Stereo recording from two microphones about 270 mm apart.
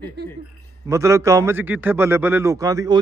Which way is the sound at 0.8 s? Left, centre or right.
Centre.